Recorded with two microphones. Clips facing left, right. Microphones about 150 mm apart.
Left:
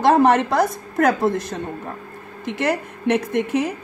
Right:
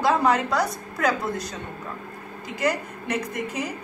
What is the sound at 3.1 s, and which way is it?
Speech, 60° left (ahead or behind).